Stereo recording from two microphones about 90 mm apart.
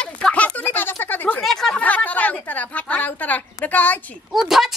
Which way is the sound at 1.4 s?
5° left (ahead or behind).